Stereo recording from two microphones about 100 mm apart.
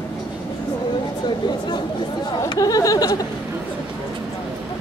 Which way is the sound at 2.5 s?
35° left (ahead or behind).